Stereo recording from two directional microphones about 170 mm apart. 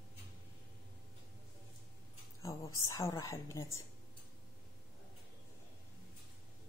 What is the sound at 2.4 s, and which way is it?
A woman's voice, 20° left (ahead or behind).